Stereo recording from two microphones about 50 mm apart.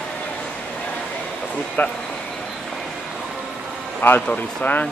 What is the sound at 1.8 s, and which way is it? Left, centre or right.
Speech, left.